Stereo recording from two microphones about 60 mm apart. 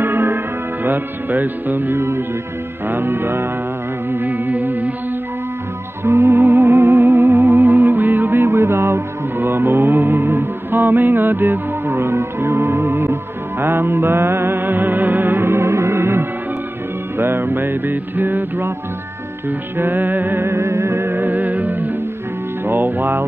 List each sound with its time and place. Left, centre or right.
0.0 s music: right
2.0 s music: right
2.9 s music: right
6.0 s music: right
19.8 s music: right
20.5 s music: right